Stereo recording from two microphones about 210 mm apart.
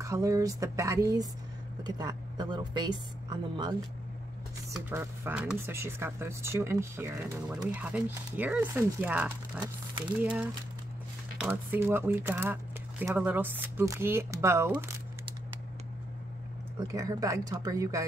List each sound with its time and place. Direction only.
0.0 s a woman's voice: 15° right (ahead or behind)
4.7 s speech: 10° right (ahead or behind)
16.8 s speech: 15° right (ahead or behind)